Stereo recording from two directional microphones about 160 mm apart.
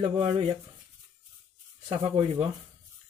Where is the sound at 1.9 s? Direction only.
35° right (ahead or behind).